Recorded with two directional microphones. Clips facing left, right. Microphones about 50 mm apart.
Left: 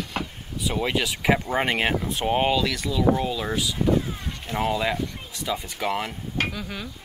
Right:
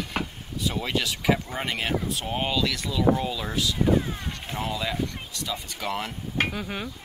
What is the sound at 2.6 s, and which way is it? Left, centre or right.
Speech, centre.